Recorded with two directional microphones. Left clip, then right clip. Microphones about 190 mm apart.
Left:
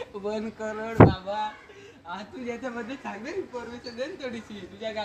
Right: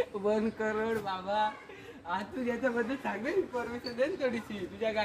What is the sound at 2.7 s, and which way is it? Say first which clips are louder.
A woman's voice: right 2 dB; 5° right (ahead or behind).